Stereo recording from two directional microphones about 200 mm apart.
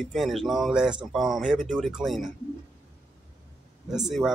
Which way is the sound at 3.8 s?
Centre (ahead or behind).